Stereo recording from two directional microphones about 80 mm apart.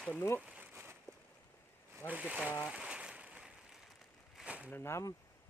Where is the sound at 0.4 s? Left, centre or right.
Centre.